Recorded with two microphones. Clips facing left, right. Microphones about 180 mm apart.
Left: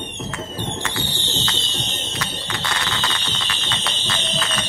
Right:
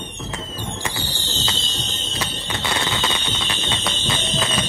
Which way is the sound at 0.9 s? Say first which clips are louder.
Left 2 dB; 35° right (ahead or behind).